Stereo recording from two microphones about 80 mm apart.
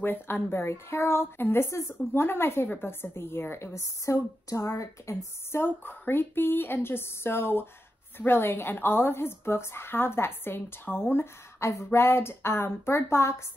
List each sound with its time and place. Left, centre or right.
0.0 s a woman's voice: left